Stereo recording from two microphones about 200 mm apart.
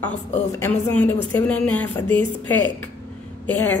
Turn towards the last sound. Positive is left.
turn(degrees=10)  # may be behind; listen again after turning